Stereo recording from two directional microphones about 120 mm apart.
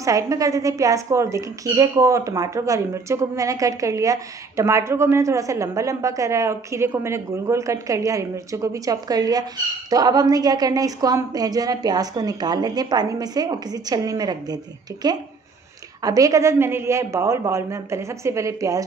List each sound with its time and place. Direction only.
0.0 s a woman's voice: 30° right (ahead or behind)